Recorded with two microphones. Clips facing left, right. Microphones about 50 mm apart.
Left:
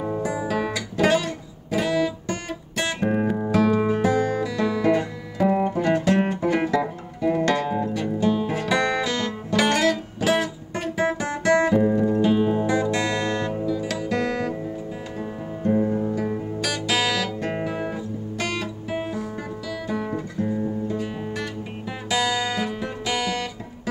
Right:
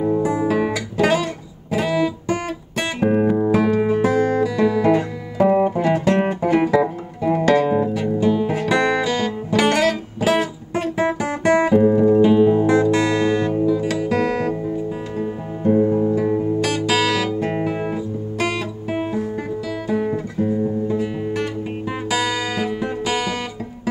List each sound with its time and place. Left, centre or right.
0.2 s guitar: centre
0.9 s music: centre
3.7 s music: centre
19.9 s guitar: centre
22.1 s music: centre